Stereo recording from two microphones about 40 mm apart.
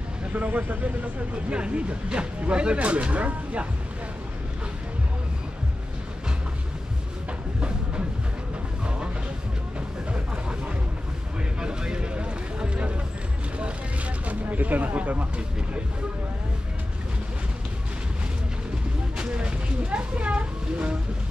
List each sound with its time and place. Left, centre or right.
0.3 s speech: right
1.3 s speech: right
9.8 s a sound: right
13.6 s vehicle: right
19.1 s speech: right